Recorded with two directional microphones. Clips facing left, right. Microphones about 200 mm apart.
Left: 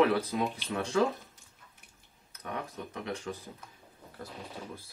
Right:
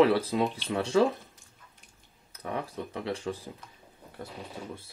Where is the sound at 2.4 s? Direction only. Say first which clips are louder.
Right 4 dB; 30° right (ahead or behind).